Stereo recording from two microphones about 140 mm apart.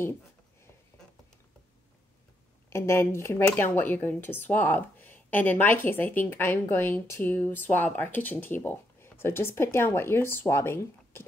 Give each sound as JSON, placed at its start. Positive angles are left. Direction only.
{"t": 2.7, "sound": "speech", "side_deg": 20}